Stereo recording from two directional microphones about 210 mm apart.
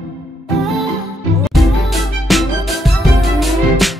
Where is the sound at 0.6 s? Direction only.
Centre (ahead or behind).